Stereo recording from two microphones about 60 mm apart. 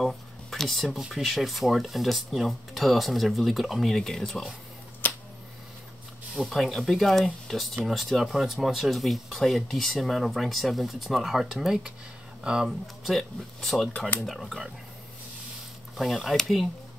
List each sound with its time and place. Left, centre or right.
0.0 s a sound: centre
1.0 s speech: centre
5.0 s a sound: left
6.4 s speech: centre
12.8 s speech: centre
13.9 s speech: left
14.2 s speech: centre
16.0 s speech: centre